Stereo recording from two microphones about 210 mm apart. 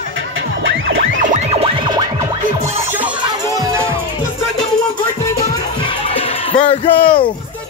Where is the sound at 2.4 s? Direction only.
35° right (ahead or behind).